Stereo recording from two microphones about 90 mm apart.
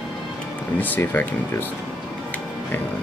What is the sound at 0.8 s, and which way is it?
Speech, 20° left (ahead or behind).